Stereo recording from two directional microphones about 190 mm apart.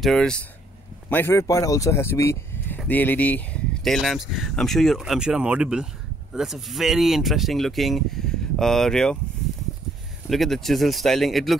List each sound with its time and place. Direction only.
0.0 s speech: 5° left (ahead or behind)
10.3 s speech: centre (ahead or behind)